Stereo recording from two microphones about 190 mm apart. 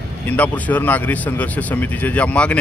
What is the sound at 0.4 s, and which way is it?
Speech, 10° left (ahead or behind).